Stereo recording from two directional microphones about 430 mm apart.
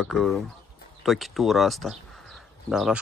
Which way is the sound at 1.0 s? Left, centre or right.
Centre.